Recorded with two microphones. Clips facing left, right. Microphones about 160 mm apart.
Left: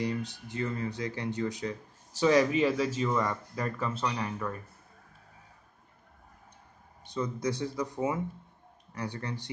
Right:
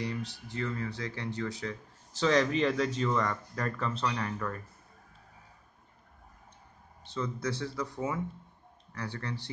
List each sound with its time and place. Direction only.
0.2 s speech: 20° left (ahead or behind)
7.1 s speech: 15° left (ahead or behind)